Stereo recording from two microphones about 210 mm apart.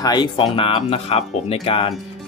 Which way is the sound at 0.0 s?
20° left (ahead or behind).